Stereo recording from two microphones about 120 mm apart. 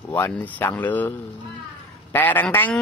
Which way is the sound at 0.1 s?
15° left (ahead or behind).